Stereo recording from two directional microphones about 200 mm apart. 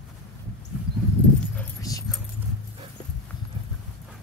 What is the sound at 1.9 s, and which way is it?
Keys jangling, 15° left (ahead or behind).